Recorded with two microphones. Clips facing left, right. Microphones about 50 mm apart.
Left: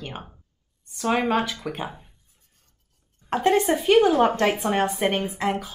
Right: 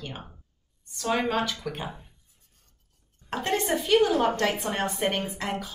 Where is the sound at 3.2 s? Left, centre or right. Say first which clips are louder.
Left 7 dB; centre.